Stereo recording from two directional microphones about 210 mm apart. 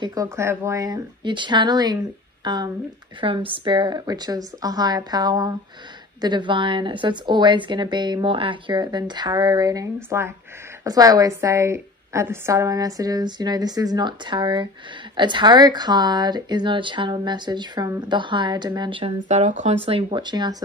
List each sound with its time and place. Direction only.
0.0 s a woman's voice: 15° right (ahead or behind)